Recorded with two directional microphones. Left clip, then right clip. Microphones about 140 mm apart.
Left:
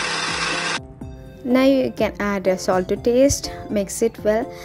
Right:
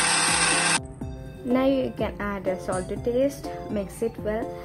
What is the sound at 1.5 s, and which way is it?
A woman's voice, 35° left (ahead or behind).